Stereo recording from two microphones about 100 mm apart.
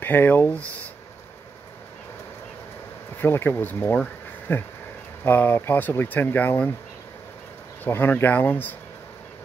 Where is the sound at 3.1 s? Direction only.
20° left (ahead or behind).